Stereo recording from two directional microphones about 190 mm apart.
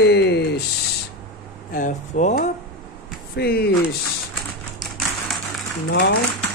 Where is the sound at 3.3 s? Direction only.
55° left (ahead or behind).